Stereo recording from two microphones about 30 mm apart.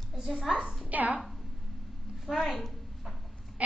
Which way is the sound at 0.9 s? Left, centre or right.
Right.